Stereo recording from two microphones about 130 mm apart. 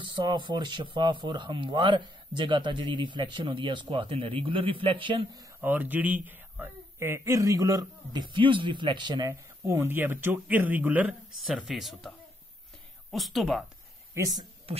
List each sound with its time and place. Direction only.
0.0 s speech: 35° right (ahead or behind)
5.6 s speech: 15° right (ahead or behind); by 9.3 s 35° right (ahead or behind)
9.3 s speech: 20° right (ahead or behind); by 12.1 s centre (ahead or behind)
13.1 s speech: centre (ahead or behind)
14.1 s speech: 25° right (ahead or behind)
14.7 s speech: 50° right (ahead or behind)